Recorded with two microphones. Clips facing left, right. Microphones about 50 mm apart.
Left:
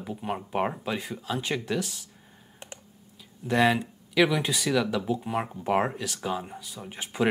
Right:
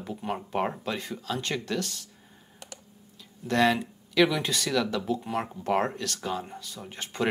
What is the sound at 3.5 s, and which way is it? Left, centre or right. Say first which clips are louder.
Speech: left 1 dB; centre.